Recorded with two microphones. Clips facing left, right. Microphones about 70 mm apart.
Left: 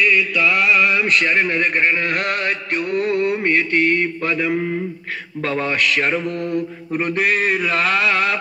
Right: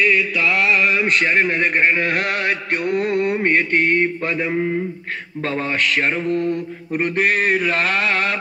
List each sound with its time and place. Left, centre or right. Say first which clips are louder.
0.4 s mantra: left 3 dB; centre
3.4 s mantra: even; right; by 6.6 s centre
7.2 s mantra: right 1 dB; right